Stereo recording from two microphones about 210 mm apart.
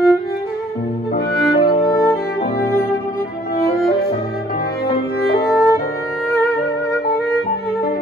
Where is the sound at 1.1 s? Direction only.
45° left (ahead or behind).